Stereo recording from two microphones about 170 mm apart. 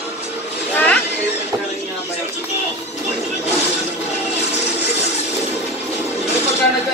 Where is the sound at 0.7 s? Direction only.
10° left (ahead or behind).